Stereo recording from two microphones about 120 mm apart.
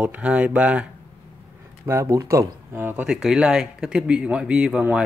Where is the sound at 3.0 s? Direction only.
5° right (ahead or behind).